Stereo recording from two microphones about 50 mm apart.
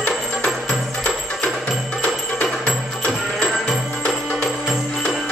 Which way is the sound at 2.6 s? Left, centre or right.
Centre.